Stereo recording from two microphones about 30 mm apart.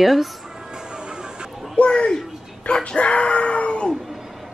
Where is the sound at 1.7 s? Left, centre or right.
Left.